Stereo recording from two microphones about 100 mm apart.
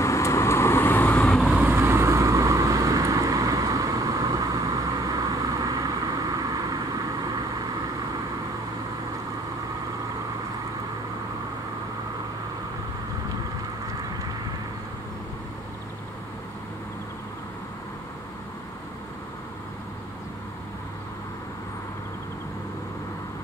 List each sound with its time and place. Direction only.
0.0 s vehicle: 30° left (ahead or behind)
1.2 s vehicle: centre (ahead or behind)
1.6 s vehicle: 25° right (ahead or behind)